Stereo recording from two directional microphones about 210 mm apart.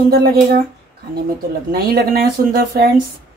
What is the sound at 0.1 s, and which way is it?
Speech, 50° right (ahead or behind).